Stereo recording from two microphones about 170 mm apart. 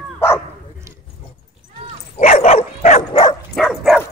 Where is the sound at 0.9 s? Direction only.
20° right (ahead or behind).